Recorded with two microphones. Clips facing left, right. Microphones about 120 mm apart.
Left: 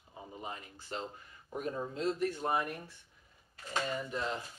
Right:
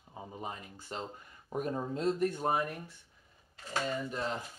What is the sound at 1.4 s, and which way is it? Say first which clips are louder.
Speech: right 3 dB; 40° right (ahead or behind).